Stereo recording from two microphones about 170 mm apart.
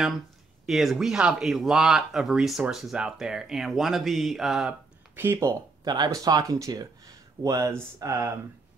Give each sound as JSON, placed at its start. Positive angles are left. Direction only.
{"t": 0.7, "sound": "speech", "side_deg": 0}
{"t": 5.1, "sound": "speech", "side_deg": -15}